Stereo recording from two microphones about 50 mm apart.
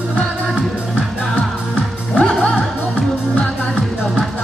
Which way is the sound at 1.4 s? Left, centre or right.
Left.